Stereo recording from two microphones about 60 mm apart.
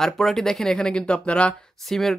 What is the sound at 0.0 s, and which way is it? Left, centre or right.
Speech, centre.